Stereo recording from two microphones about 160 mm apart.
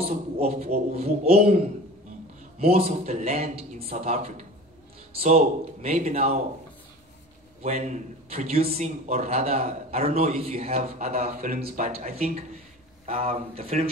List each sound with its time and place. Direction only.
0.0 s a man's voice: 40° right (ahead or behind)
2.6 s a man's voice: 40° right (ahead or behind)
7.6 s a man's voice: 45° right (ahead or behind)
11.3 s speech: 65° right (ahead or behind)
11.9 s a man's voice: 40° right (ahead or behind)